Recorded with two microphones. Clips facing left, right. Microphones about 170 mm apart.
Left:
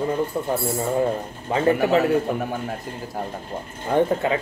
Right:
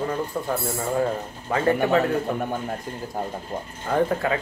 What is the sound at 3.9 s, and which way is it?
Speech, 25° left (ahead or behind).